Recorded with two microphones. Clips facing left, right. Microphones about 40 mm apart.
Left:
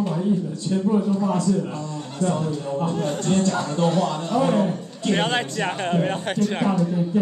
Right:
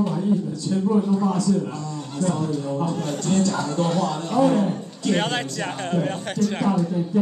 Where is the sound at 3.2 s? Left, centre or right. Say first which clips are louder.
Right 1 dB; left.